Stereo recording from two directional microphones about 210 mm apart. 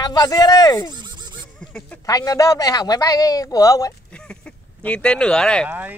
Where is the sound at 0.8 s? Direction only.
20° right (ahead or behind).